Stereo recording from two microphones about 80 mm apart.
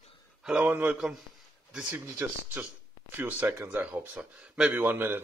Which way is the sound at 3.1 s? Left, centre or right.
Right.